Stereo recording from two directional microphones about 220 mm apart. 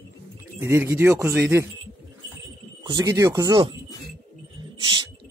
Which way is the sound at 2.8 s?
15° right (ahead or behind).